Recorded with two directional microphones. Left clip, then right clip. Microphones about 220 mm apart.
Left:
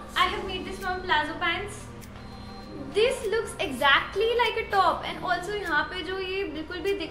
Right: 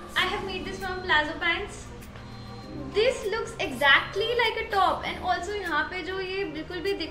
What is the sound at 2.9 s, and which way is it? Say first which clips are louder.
A woman's voice: left 1 dB; 10° left (ahead or behind).